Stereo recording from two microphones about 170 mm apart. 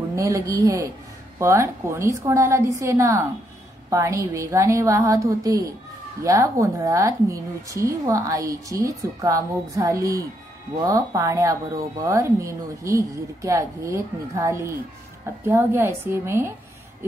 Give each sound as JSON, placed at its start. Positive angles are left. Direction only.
{"t": 0.1, "sound": "a woman's voice", "side_deg": -20}